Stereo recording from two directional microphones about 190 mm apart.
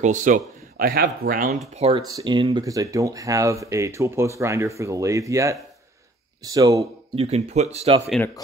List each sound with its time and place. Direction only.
0.0 s speech: 40° right (ahead or behind)
2.0 s speech: 20° right (ahead or behind)
7.2 s speech: 35° right (ahead or behind)